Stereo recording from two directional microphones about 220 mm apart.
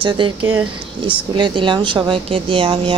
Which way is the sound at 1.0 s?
20° right (ahead or behind).